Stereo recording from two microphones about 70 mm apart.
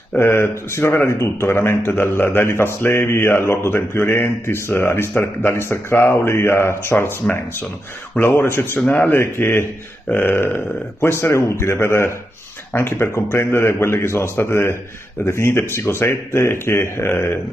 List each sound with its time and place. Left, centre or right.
0.2 s a man's voice: left